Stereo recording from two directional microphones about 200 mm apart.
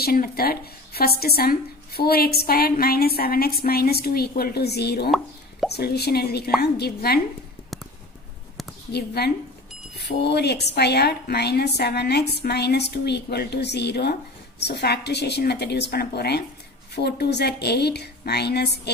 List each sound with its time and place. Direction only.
0.0 s a woman's voice: 50° left (ahead or behind)
8.9 s a woman's voice: 55° left (ahead or behind)